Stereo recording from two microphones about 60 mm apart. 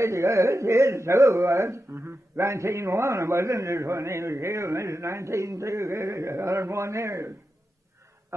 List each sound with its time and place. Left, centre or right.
0.0 s a man's voice: right